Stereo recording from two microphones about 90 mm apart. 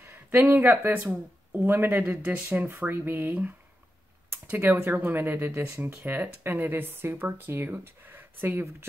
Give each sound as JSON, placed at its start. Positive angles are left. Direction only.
{"t": 0.0, "sound": "speech", "side_deg": -25}